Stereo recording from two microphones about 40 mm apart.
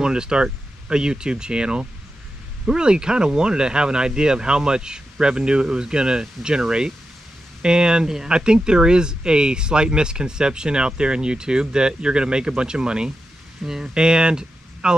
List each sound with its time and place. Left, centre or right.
0.0 s speech: centre